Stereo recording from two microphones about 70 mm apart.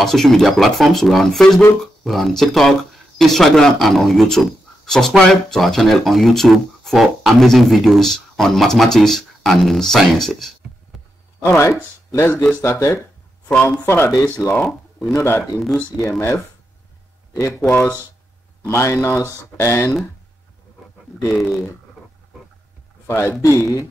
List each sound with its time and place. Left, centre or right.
0.0 s speech: centre
11.4 s speech: left
14.5 s speech: left
15.1 s speech: left
17.6 s speech: left
18.6 s speech: left
21.4 s speech: centre
23.0 s speech: left